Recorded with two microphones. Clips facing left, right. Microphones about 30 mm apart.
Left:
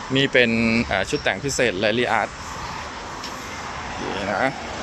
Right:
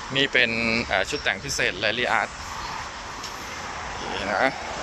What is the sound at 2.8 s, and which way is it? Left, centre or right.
Vehicle, centre.